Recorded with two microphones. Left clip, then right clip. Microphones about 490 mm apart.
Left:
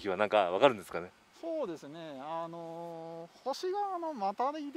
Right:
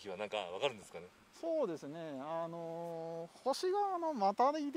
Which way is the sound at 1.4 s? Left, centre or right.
Right.